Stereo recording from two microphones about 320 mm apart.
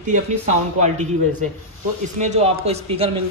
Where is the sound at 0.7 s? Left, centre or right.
Right.